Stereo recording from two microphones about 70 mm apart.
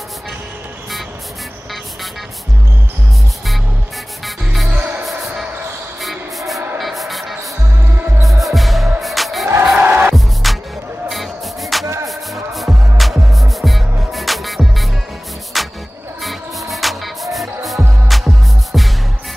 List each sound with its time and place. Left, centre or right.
4.6 s music: centre
5.9 s a sound: centre
6.8 s music: centre
9.8 s music: right
10.1 s music: centre
12.9 s music: centre